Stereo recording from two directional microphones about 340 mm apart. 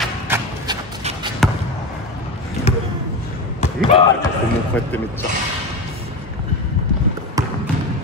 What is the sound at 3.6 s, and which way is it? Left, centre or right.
Basketball bounce, centre.